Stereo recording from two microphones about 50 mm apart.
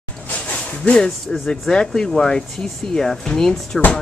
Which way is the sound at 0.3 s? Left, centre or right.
Left.